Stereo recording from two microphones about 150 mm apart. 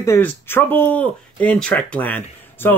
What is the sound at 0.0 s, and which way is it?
Speech, 15° left (ahead or behind).